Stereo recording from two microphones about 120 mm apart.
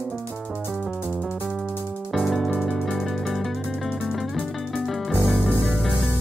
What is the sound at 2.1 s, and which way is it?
Music, centre (ahead or behind).